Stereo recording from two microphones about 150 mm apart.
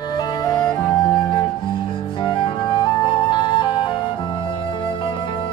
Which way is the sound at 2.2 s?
30° left (ahead or behind).